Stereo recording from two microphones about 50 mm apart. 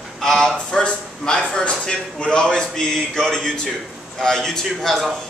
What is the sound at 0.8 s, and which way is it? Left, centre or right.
A man's voice, centre.